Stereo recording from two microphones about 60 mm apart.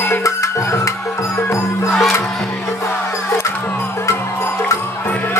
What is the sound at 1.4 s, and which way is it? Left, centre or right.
Music, left.